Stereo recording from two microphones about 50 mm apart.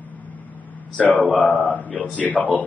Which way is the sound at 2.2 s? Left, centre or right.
Left.